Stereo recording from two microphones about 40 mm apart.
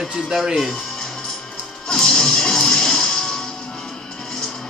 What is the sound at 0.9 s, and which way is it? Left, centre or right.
Music, centre.